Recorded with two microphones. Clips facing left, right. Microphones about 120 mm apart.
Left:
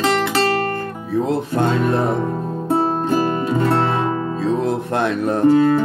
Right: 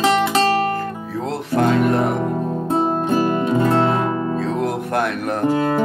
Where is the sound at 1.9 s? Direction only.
30° left (ahead or behind).